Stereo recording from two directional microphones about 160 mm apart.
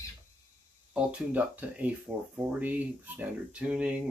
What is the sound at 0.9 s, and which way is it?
Speech, 10° right (ahead or behind).